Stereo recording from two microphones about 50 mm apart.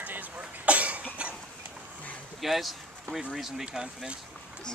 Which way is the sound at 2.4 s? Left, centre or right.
Centre.